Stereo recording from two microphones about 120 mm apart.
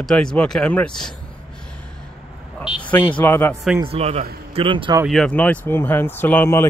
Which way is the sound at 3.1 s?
15° left (ahead or behind).